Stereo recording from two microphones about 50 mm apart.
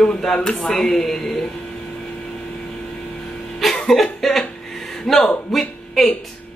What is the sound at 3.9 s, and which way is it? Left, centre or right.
Cough, centre.